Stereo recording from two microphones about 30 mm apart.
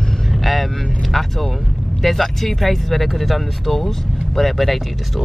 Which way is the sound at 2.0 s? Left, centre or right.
Centre.